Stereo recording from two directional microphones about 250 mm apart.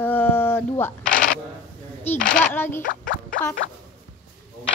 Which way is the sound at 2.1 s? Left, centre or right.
Centre.